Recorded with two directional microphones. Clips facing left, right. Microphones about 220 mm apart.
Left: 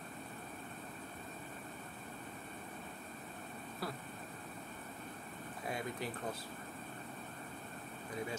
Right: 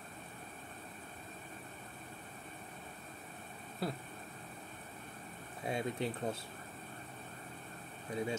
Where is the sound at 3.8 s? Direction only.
25° right (ahead or behind).